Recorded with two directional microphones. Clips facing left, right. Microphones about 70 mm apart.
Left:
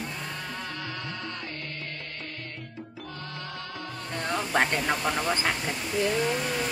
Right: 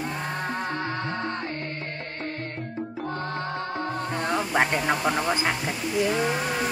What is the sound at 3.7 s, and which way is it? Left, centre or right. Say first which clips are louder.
Music: right 5 dB; right.